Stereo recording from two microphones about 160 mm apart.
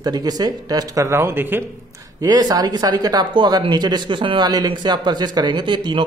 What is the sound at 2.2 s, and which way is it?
Speech, 25° right (ahead or behind).